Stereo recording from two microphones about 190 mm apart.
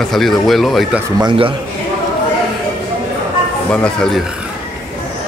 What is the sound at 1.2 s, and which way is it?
Speech, 25° right (ahead or behind).